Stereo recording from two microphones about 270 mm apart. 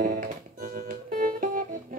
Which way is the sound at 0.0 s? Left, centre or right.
Right.